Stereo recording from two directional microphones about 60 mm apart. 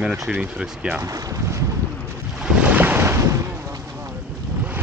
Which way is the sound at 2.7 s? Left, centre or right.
Right.